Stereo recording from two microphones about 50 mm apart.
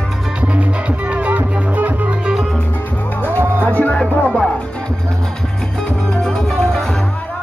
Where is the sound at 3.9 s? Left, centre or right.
Centre.